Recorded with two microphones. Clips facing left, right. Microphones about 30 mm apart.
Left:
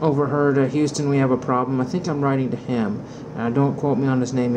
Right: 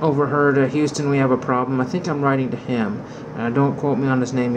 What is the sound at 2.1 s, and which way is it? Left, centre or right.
Speech, centre.